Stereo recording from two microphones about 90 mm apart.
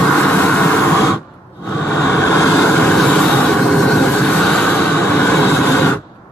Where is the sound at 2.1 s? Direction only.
30° left (ahead or behind).